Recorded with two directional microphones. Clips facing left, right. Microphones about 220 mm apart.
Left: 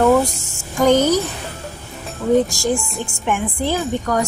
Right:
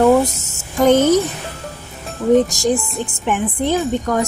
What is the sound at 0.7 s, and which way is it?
Speech, 20° right (ahead or behind).